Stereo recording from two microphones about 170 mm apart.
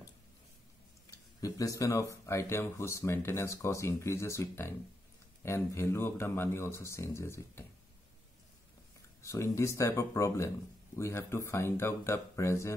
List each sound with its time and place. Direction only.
1.4 s speech: 20° left (ahead or behind)
9.2 s speech: 20° left (ahead or behind)